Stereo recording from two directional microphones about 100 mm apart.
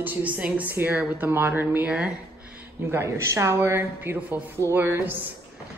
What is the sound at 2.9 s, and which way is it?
A woman's voice, 30° right (ahead or behind).